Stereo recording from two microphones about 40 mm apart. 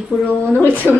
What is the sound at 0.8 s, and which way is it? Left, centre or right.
Speech, left.